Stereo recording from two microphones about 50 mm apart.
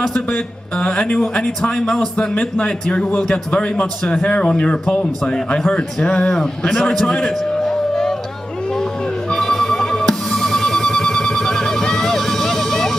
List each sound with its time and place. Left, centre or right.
0.1 s a man's voice: left; by 7.1 s centre
7.1 s music: centre
9.3 s music: centre